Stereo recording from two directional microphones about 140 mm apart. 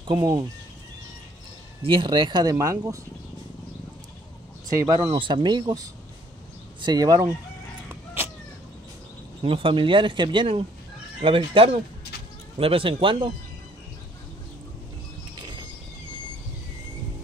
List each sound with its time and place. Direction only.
0.1 s speech: 30° right (ahead or behind)
1.8 s speech: 40° right (ahead or behind)
2.5 s speech: 20° right (ahead or behind)
4.8 s speech: 35° right (ahead or behind)
9.4 s speech: 40° right (ahead or behind)